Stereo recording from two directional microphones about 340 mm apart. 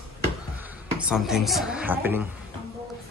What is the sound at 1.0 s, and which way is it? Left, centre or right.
Speech, centre.